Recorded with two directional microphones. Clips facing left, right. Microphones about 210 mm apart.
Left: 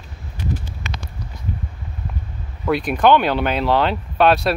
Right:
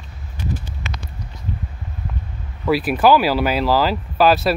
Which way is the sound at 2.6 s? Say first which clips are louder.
Right 1 dB; 5° right (ahead or behind).